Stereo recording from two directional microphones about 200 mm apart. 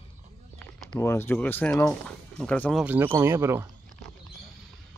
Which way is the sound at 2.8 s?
10° right (ahead or behind).